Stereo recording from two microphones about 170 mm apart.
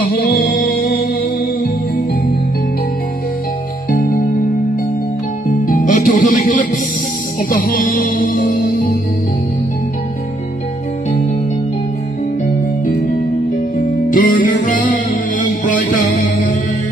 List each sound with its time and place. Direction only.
0.3 s music: 70° left (ahead or behind)
3.9 s music: 50° left (ahead or behind)
5.5 s music: 50° left (ahead or behind)
12.4 s music: 50° left (ahead or behind)